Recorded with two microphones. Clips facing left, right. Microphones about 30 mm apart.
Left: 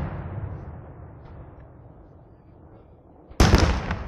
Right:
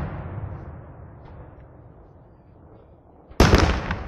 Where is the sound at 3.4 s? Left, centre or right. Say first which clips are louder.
Right 3 dB; centre.